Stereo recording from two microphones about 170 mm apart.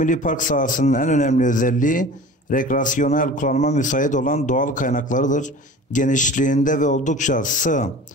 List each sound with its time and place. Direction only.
0.0 s speech: 50° left (ahead or behind)